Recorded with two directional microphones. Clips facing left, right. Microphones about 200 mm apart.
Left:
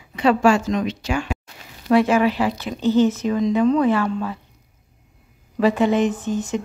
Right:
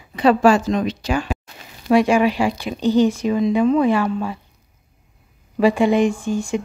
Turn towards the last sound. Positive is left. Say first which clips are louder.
# right 2 dB
turn(degrees=-10)  # may be behind; listen again after turning